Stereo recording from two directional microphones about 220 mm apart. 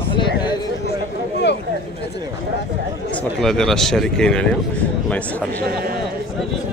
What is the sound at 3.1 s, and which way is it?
A man's voice, centre (ahead or behind).